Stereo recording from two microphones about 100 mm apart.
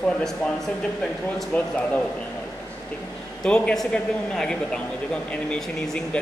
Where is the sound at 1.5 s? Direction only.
15° left (ahead or behind).